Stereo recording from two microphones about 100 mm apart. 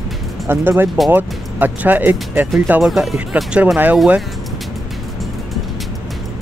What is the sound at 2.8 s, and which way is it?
Speech, 5° right (ahead or behind).